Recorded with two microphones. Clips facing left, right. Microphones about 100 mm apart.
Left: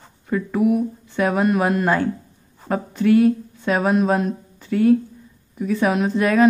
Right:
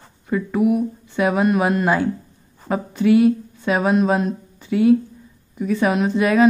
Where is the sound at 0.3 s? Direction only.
5° right (ahead or behind).